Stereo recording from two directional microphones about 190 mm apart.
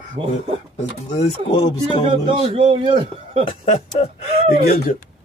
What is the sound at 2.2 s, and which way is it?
A man's voice, 30° right (ahead or behind).